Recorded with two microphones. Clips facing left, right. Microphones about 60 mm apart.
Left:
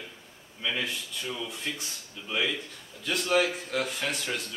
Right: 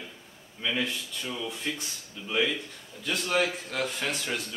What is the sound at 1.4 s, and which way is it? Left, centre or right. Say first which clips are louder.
Speech: right 2 dB; centre.